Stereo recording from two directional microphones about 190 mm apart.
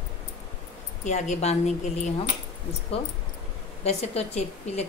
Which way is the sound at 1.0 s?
35° left (ahead or behind).